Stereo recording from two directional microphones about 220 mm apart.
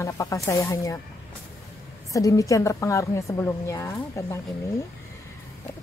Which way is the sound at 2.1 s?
15° left (ahead or behind).